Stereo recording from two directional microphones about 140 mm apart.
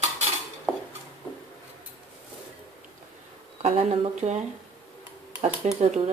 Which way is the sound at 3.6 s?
45° right (ahead or behind).